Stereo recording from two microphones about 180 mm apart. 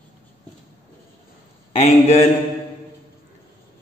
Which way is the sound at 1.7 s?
35° left (ahead or behind).